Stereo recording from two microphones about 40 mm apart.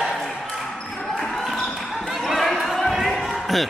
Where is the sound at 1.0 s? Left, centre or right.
Centre.